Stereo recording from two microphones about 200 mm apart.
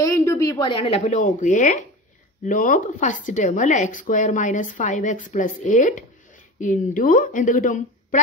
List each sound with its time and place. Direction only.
0.0 s a woman's voice: 15° left (ahead or behind); by 8.2 s 40° left (ahead or behind)